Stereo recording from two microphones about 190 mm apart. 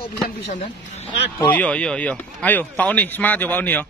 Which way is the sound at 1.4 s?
10° left (ahead or behind).